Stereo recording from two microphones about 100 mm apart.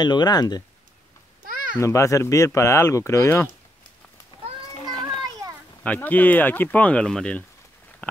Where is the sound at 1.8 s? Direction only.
30° left (ahead or behind).